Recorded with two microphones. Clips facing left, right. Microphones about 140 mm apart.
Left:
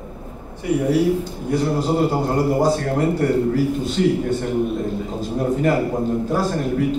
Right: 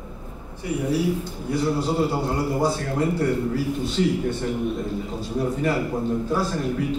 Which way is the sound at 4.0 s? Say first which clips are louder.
Left 4 dB; 60° left (ahead or behind).